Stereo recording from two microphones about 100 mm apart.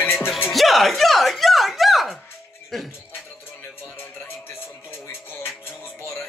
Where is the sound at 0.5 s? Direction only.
Centre (ahead or behind).